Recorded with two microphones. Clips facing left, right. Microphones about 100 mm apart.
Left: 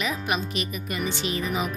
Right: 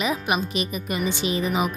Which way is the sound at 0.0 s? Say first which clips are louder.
Right 3 dB; 15° right (ahead or behind).